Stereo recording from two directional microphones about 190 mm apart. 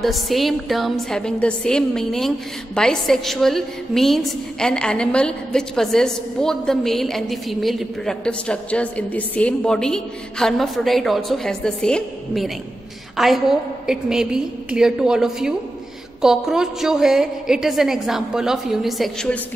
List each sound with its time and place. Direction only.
0.0 s a woman's voice: centre (ahead or behind)